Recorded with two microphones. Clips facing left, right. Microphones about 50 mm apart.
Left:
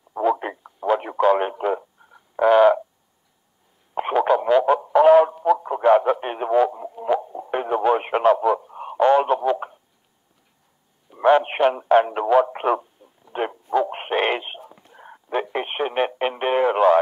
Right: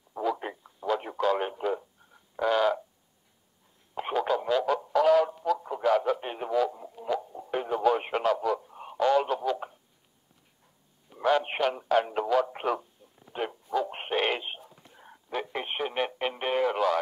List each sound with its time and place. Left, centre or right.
0.1 s radio: left
3.9 s radio: left
4.7 s a sound: left
6.2 s radio: left
11.1 s radio: left
13.3 s a sound: left
14.6 s whispering: left
15.0 s radio: left